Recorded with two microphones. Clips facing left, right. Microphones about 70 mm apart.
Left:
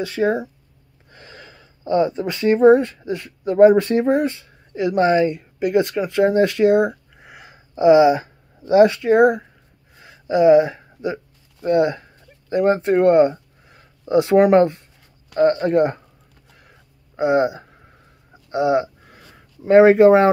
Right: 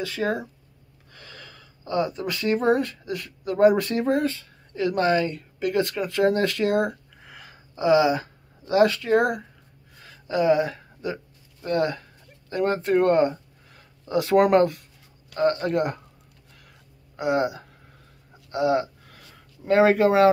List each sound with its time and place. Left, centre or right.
0.0 s speech: centre
10.0 s a sound: left
14.5 s speech: left
17.2 s speech: left
18.5 s a sound: left
19.7 s speech: left